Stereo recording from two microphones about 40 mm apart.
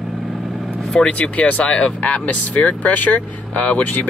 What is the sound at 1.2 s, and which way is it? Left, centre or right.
Speech, left.